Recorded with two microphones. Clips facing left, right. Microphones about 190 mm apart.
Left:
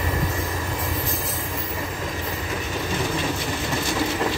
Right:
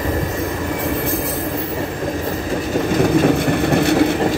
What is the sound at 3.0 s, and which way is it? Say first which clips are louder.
Vehicle: right 15 dB; 60° right (ahead or behind).